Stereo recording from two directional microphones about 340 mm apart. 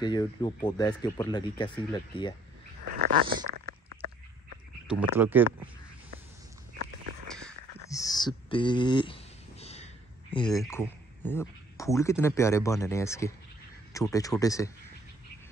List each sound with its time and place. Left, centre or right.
0.0 s speech: centre
2.9 s dog: right
3.3 s speech: centre
3.5 s a sound: right
4.8 s speech: centre
7.2 s a sound: centre
10.3 s speech: centre